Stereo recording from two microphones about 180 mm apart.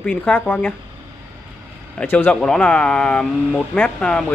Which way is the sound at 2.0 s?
10° left (ahead or behind).